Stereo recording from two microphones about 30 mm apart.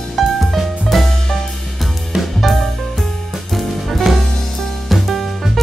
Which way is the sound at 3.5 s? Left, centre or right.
Centre.